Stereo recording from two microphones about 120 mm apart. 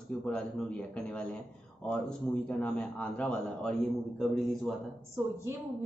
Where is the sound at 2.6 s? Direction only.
10° left (ahead or behind).